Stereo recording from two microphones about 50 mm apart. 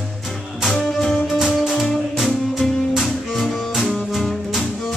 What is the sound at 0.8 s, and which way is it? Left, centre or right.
Music, centre.